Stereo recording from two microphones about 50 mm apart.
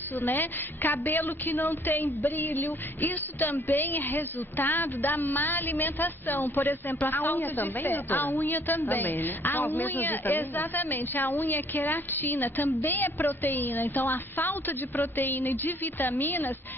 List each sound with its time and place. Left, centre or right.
0.2 s a woman's voice: left